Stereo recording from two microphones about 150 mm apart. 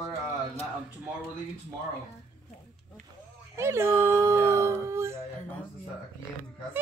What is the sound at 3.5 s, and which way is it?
Speech, 15° right (ahead or behind).